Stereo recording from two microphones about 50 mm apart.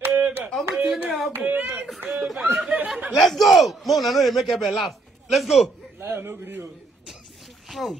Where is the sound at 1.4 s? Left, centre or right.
Right.